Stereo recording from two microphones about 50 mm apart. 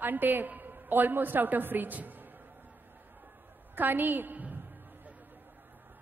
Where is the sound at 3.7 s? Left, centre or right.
Right.